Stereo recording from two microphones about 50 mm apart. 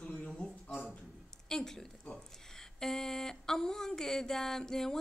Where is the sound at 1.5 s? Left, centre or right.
Centre.